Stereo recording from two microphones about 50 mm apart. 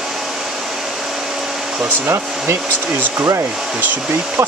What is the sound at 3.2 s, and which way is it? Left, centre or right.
Hair dryer, right.